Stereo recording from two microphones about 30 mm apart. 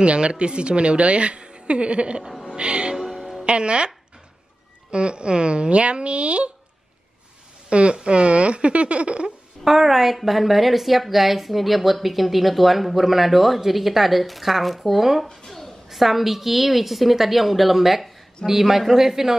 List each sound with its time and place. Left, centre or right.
0.0 s a woman's voice: right
2.4 s music: right
3.1 s music: centre
3.4 s a woman's voice: right
4.9 s a woman's voice: right
7.7 s a woman's voice: right
9.7 s a woman's voice: centre